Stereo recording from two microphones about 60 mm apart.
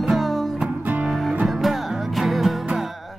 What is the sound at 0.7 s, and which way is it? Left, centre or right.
Music, right.